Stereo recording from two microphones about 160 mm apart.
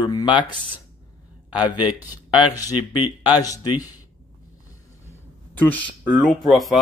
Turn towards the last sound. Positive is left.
turn(degrees=0)  # may be behind; listen again after turning